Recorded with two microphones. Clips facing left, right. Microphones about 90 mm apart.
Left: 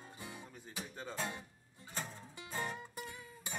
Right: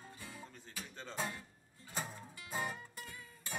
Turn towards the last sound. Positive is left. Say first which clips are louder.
# left 4 dB
turn(degrees=20)  # may be behind; listen again after turning